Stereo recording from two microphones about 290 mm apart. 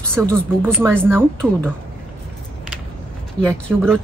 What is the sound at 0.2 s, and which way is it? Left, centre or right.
Speech, centre.